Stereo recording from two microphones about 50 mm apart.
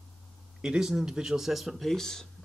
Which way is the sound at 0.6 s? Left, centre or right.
Centre.